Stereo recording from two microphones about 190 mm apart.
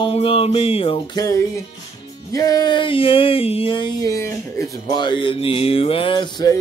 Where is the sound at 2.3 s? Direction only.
20° left (ahead or behind).